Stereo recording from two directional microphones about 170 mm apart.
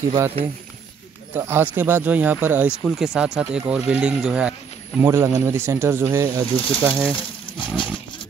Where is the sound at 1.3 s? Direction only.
15° right (ahead or behind).